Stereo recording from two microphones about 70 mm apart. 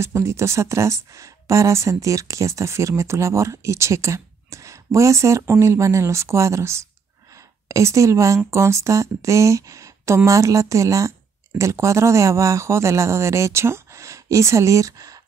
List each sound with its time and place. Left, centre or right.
0.0 s speech: right